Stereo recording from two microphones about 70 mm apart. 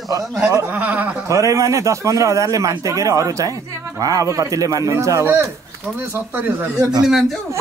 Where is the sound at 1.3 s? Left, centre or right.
Right.